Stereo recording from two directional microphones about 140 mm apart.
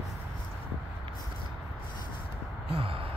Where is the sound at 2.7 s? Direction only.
40° right (ahead or behind).